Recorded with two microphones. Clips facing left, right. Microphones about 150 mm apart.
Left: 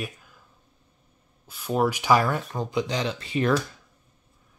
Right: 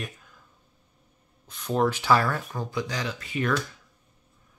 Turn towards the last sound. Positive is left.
turn(degrees=30)  # may be behind; listen again after turning